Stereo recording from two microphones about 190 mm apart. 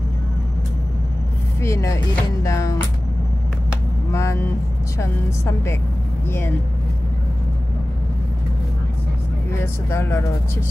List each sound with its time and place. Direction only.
1.6 s a woman's voice: 15° left (ahead or behind)
4.1 s vehicle: 15° left (ahead or behind)
4.9 s a woman's voice: 15° left (ahead or behind)
9.8 s a woman's voice: 15° left (ahead or behind)